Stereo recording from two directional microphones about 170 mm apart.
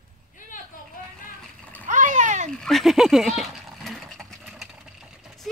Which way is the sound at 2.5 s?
Centre (ahead or behind).